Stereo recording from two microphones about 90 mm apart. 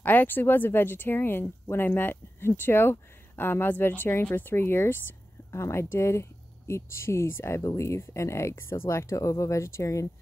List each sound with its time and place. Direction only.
0.0 s speech: 20° left (ahead or behind)